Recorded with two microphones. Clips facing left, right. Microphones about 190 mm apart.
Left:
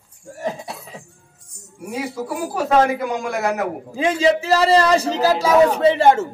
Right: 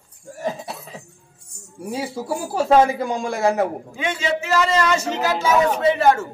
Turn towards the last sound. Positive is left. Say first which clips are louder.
# left 3 dB
turn(degrees=25)  # may be behind; listen again after turning